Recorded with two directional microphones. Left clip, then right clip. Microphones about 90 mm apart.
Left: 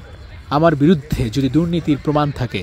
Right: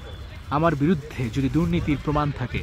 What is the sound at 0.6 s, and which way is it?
Speech, 80° left.